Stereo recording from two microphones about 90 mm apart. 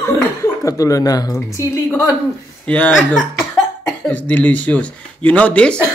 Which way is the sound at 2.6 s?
15° left (ahead or behind).